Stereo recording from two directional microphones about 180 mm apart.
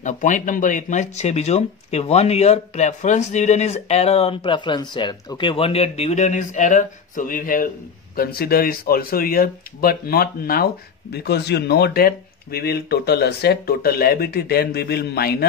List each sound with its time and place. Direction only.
0.0 s speech: 45° left (ahead or behind); by 15.3 s 60° left (ahead or behind)